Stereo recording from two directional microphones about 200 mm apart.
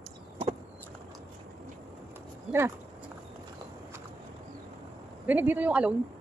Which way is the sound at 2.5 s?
10° right (ahead or behind).